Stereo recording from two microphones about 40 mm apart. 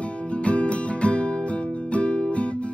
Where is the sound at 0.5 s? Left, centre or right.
Left.